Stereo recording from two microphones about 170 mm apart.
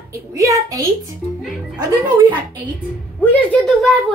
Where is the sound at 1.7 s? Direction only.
25° right (ahead or behind).